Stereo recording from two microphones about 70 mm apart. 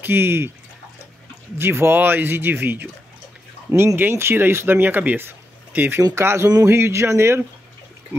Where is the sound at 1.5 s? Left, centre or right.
Right.